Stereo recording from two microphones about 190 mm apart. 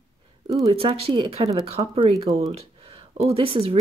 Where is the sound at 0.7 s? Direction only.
30° right (ahead or behind).